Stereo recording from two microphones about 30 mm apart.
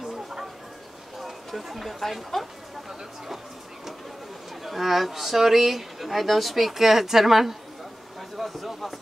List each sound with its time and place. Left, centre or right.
0.1 s a sound: centre
1.5 s speech: centre
4.6 s speech: centre